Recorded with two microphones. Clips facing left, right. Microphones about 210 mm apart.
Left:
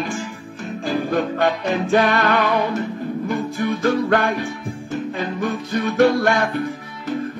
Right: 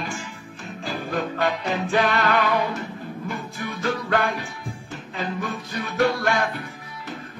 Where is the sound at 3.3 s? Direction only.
45° left (ahead or behind).